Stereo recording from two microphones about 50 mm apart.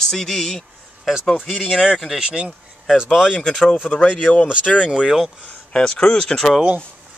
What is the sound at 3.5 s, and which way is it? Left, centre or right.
Speech, centre.